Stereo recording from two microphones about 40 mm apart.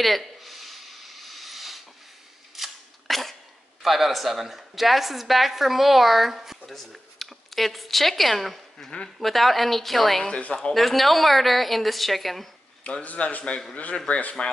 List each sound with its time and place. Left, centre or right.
0.0 s a sound: centre
2.5 s cap gun: centre
3.8 s a woman's voice: centre
6.6 s a woman's voice: centre
10.4 s speech: left
10.7 s a woman's voice: centre
13.0 s a man's voice: left